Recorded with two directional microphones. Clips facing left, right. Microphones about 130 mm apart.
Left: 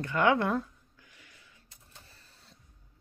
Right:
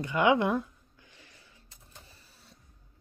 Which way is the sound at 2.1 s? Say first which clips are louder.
Right 1 dB; 10° right (ahead or behind).